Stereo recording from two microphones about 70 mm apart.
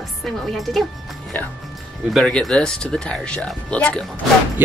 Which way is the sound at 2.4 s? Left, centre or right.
Centre.